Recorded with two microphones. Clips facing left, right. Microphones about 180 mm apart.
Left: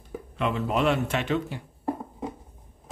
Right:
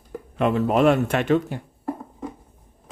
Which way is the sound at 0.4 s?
45° right (ahead or behind).